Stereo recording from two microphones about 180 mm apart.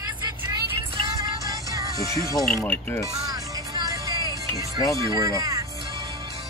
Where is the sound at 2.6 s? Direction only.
15° left (ahead or behind).